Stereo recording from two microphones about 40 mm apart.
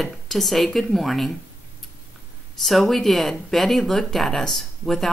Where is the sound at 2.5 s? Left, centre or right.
Centre.